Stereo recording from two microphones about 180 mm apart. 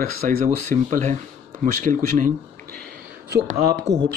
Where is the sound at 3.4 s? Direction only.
60° right (ahead or behind).